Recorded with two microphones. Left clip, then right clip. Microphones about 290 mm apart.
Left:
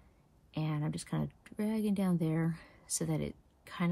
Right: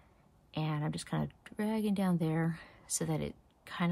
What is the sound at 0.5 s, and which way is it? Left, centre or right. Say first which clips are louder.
Speech: right 1 dB; centre.